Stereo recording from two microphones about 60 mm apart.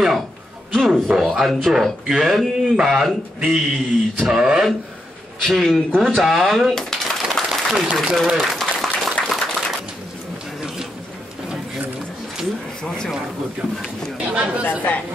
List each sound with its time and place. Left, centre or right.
0.7 s speech: centre
5.9 s a sound: centre
8.0 s speech: centre
8.4 s applause: centre
12.8 s a sound: centre
14.1 s speech: centre
14.6 s speech: left